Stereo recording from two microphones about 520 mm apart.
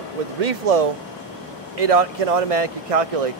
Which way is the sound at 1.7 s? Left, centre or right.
Right.